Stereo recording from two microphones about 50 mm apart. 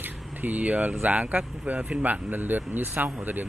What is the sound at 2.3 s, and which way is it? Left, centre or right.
Speech, right.